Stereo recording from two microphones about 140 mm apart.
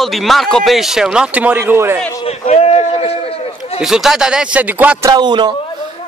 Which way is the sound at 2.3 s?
50° left (ahead or behind).